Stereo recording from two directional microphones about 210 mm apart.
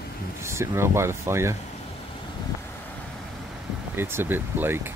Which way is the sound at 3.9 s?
10° right (ahead or behind).